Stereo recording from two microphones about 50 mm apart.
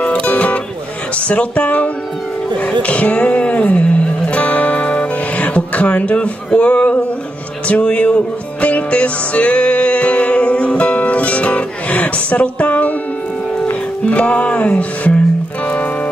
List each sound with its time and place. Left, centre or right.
0.0 s music: left
1.3 s speech: left
2.5 s music: left